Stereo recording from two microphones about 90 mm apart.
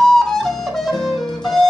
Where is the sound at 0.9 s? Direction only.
55° left (ahead or behind).